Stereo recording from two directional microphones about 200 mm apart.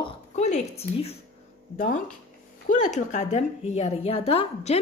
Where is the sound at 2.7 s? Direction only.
40° left (ahead or behind).